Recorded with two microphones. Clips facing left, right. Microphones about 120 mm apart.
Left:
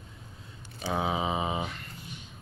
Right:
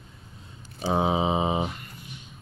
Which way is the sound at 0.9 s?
25° right (ahead or behind).